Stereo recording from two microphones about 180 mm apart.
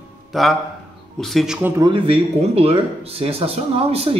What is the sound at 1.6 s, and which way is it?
Speech, 15° right (ahead or behind).